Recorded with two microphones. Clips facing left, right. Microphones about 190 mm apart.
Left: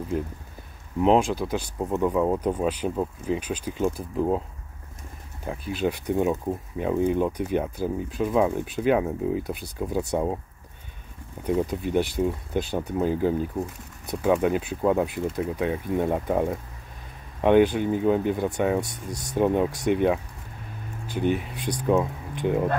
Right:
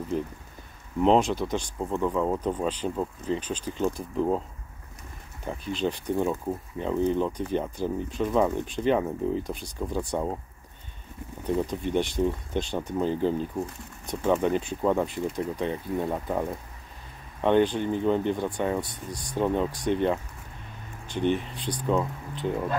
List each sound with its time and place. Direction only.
1.0 s speech: 5° left (ahead or behind)
5.5 s speech: 5° left (ahead or behind)
11.4 s speech: 10° left (ahead or behind)
15.9 s speech: 20° left (ahead or behind)